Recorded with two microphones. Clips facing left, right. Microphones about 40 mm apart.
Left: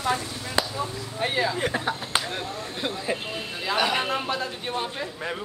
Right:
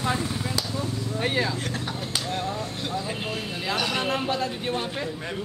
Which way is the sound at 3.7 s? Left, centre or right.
Centre.